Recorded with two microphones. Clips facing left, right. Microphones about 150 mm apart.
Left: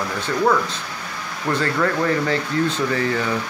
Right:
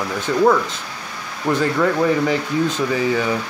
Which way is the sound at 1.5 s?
10° right (ahead or behind).